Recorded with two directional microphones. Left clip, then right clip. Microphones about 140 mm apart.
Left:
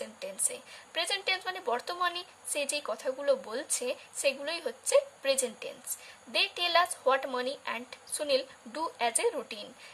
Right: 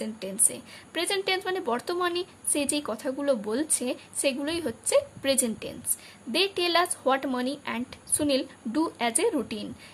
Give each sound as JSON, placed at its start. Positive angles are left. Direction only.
{"t": 0.0, "sound": "a woman's voice", "side_deg": -15}